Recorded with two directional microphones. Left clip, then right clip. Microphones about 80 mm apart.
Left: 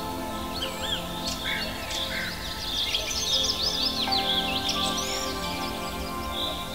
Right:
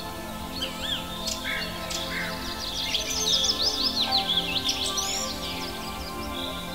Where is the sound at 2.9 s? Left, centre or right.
Right.